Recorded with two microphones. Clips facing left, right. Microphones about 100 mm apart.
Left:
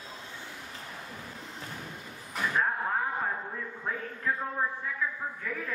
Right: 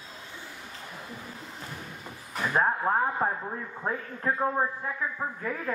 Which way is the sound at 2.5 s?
40° right (ahead or behind).